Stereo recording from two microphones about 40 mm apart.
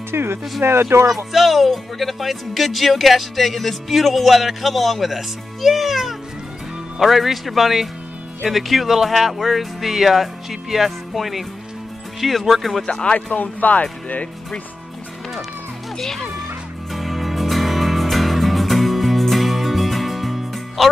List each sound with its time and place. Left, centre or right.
0.1 s speech: right
0.6 s speech: right
1.1 s speech: centre
13.0 s speech: left
13.4 s speech: left
16.0 s speech: centre
16.9 s music: centre